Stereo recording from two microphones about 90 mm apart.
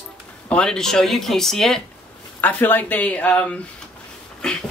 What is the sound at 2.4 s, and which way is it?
Speech, 20° left (ahead or behind).